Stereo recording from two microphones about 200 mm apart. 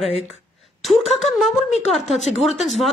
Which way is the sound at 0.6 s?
Centre (ahead or behind).